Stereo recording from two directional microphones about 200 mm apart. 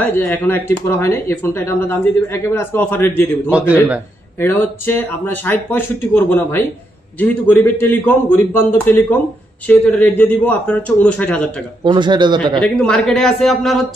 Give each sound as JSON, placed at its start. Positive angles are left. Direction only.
{"t": 0.0, "sound": "speech", "side_deg": 10}
{"t": 3.4, "sound": "speech", "side_deg": -5}
{"t": 4.4, "sound": "speech", "side_deg": 10}
{"t": 11.8, "sound": "a man's voice", "side_deg": -25}
{"t": 12.5, "sound": "speech", "side_deg": 5}